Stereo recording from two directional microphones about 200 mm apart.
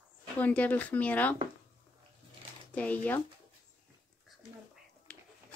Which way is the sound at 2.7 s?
5° left (ahead or behind).